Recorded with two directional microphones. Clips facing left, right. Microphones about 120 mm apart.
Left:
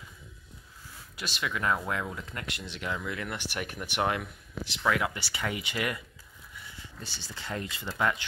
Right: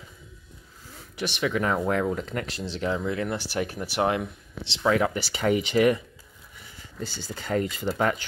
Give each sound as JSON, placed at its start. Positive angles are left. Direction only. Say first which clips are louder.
{"t": 1.4, "sound": "speech", "louder": "right 4 dB", "side_deg": -30}
{"t": 1.8, "sound": "speech", "louder": "right 9 dB", "side_deg": -40}
{"t": 7.3, "sound": "speech", "louder": "right 10 dB", "side_deg": -40}